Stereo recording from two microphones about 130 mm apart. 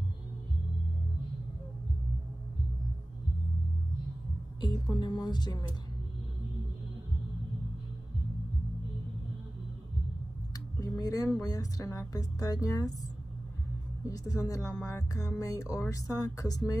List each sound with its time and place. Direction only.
4.6 s a woman's voice: 35° left (ahead or behind)
10.8 s speech: 25° left (ahead or behind)
14.0 s speech: 25° left (ahead or behind)